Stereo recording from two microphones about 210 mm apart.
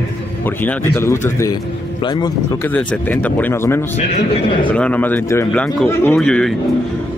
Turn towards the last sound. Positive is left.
turn(degrees=5)  # may be behind; listen again after turning